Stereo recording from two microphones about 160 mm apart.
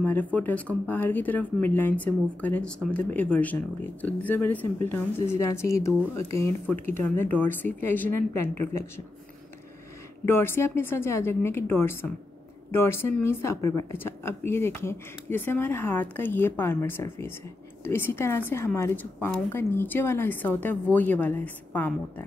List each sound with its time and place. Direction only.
0.0 s speech: 10° left (ahead or behind)
10.2 s speech: 15° left (ahead or behind)